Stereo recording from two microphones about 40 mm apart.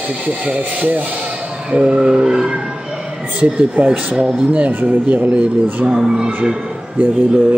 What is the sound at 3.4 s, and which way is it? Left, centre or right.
Speech, right.